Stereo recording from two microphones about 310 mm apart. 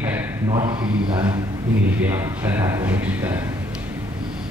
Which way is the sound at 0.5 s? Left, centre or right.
Centre.